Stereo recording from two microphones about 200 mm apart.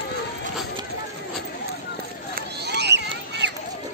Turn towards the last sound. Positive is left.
turn(degrees=-60)  # may be behind; listen again after turning